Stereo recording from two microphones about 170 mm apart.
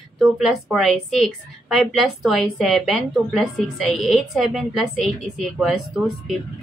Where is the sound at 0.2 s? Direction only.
5° right (ahead or behind).